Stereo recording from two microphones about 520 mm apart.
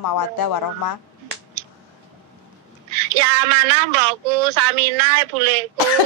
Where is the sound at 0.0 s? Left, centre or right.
Left.